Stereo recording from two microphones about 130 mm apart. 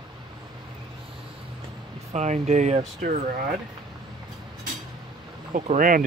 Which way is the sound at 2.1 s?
60° right (ahead or behind).